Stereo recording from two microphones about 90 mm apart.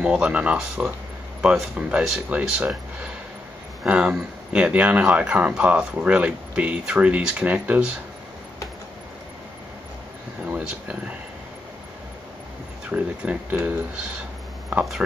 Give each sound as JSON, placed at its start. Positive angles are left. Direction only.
{"t": 0.0, "sound": "speech", "side_deg": -10}
{"t": 3.8, "sound": "speech", "side_deg": -5}
{"t": 10.4, "sound": "speech", "side_deg": -15}
{"t": 12.9, "sound": "speech", "side_deg": -15}